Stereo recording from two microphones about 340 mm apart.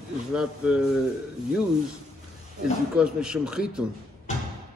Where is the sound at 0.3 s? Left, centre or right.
Centre.